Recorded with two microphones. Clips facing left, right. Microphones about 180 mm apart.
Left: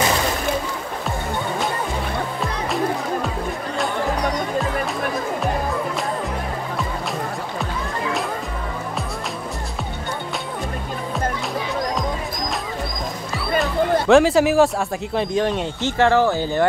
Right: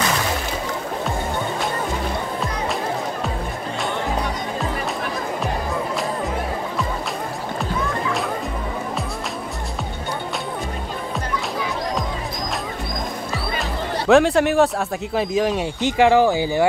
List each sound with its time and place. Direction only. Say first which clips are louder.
14.0 s speech: right 1 dB; centre (ahead or behind)